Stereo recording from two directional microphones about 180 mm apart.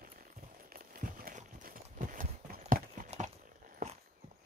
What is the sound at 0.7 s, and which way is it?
Horse, 55° right (ahead or behind).